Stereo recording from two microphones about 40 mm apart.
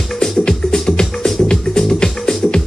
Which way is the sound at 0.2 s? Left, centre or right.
Centre.